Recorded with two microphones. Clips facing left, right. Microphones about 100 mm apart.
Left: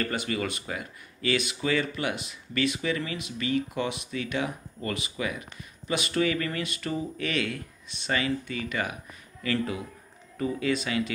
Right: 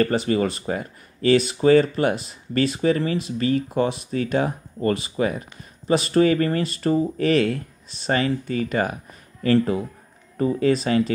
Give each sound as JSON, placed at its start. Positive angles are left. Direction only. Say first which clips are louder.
{"t": 0.0, "sound": "speech", "louder": "right 9 dB", "side_deg": -35}